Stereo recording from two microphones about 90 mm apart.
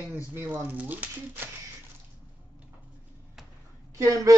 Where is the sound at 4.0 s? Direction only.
35° right (ahead or behind).